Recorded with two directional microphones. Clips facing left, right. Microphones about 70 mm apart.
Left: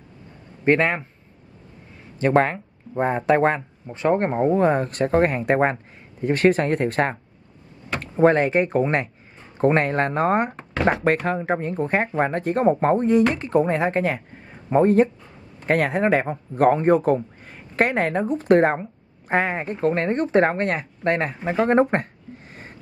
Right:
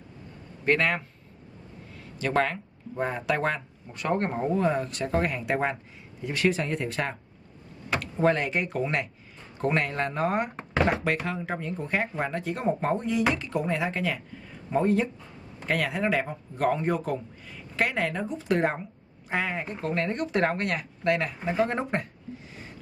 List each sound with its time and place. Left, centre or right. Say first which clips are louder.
0.7 s a man's voice: left 6 dB; left
2.1 s a man's voice: left 7 dB; left
8.0 s a man's voice: left 8 dB; left
21.9 s a sound: left 6 dB; left